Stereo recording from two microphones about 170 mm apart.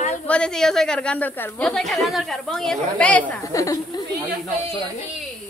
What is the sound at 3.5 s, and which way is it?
Speech, 20° left (ahead or behind).